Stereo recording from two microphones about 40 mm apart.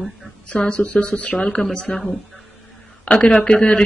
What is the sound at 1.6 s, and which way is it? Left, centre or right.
Speech, centre.